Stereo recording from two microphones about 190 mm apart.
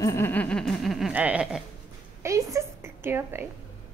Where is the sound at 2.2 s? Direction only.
15° right (ahead or behind).